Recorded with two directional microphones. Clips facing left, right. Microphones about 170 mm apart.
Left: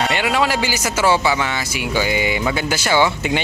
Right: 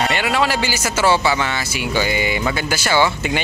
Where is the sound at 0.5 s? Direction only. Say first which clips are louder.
Even; 15° left (ahead or behind).